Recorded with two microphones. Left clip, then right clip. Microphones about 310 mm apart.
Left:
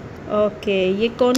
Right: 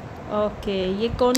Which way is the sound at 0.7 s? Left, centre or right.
Centre.